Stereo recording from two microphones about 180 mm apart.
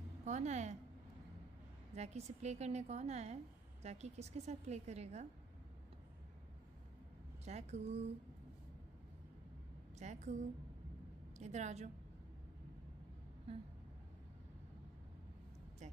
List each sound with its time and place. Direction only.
0.2 s a woman's voice: 40° right (ahead or behind)
2.0 s a woman's voice: 40° right (ahead or behind)
7.4 s a woman's voice: 40° right (ahead or behind)
9.9 s a woman's voice: 40° right (ahead or behind)
11.3 s a woman's voice: 40° right (ahead or behind)
15.8 s speech: 40° right (ahead or behind)